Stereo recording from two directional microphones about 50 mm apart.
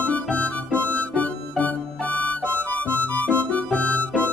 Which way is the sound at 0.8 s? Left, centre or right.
Left.